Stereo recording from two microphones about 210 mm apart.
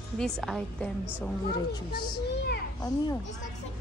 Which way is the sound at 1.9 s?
50° left (ahead or behind).